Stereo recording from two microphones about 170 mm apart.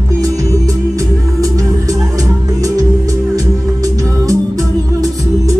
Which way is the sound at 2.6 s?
20° right (ahead or behind).